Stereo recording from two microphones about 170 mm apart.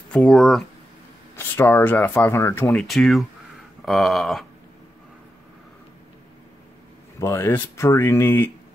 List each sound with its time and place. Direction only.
0.1 s speech: centre (ahead or behind)
1.3 s speech: 15° left (ahead or behind)
2.7 s speech: centre (ahead or behind)
7.2 s speech: 15° left (ahead or behind)